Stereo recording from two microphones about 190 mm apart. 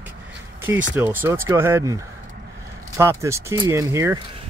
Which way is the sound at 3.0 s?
15° right (ahead or behind).